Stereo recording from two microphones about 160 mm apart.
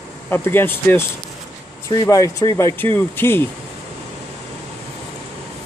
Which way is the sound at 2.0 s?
20° left (ahead or behind).